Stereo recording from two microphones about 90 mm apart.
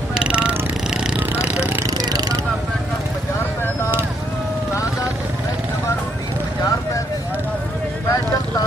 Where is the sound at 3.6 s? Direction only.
25° left (ahead or behind).